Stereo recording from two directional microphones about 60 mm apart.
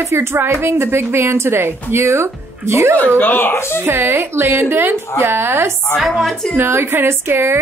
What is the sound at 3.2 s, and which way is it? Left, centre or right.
Speech, left.